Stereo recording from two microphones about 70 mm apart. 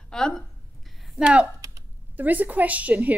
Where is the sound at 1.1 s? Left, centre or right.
Centre.